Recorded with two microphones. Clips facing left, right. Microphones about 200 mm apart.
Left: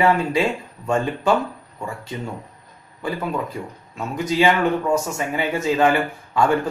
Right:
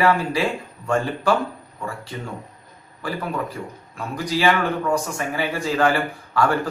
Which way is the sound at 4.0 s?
20° left (ahead or behind).